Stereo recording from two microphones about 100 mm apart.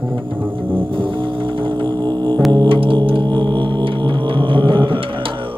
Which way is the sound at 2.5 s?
60° right (ahead or behind).